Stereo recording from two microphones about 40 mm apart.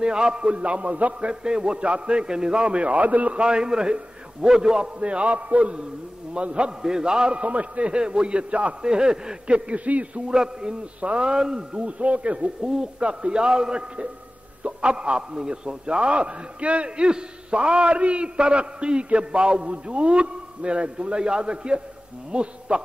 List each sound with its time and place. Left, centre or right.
0.0 s a man's voice: right
1.3 s a man's voice: right
3.3 s a man's voice: right
5.0 s a man's voice: right
7.3 s a man's voice: right
9.8 s a man's voice: right
10.2 s a man's voice: centre